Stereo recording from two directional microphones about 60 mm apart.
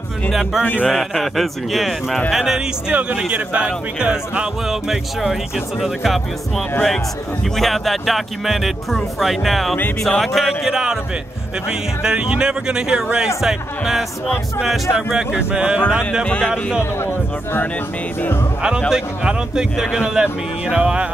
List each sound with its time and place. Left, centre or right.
0.3 s speech: centre
2.9 s speech: right; by 6.2 s centre
7.5 s speech: centre
10.7 s speech: centre
12.0 s speech: centre
16.3 s speech: centre
17.0 s speech: left
18.9 s speech: centre